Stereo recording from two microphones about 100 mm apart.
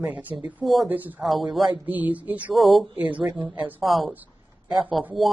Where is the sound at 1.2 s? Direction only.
Centre (ahead or behind).